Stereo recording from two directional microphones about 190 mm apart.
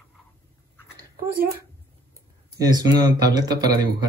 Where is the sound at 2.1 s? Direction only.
20° right (ahead or behind).